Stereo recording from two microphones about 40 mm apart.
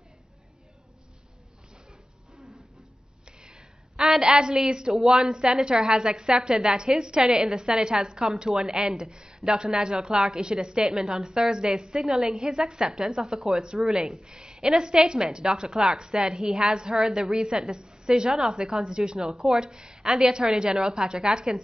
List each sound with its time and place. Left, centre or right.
4.2 s a woman's voice: centre
4.9 s a woman's voice: centre
12.0 s a woman's voice: centre; by 21.5 s right